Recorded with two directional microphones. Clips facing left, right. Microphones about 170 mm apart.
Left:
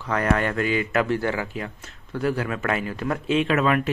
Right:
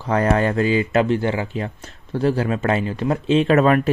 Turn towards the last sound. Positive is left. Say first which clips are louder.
# right 6 dB
turn(degrees=-40)  # may be behind; listen again after turning